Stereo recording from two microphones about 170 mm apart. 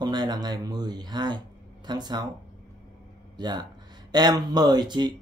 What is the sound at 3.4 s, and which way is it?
Speech, 25° right (ahead or behind).